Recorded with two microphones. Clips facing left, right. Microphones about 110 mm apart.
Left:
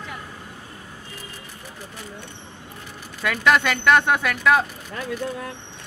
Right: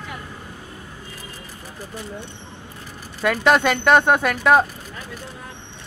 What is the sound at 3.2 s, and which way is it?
Speech, 40° right (ahead or behind).